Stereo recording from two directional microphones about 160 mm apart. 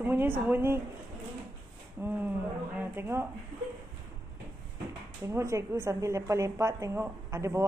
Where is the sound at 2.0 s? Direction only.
15° right (ahead or behind).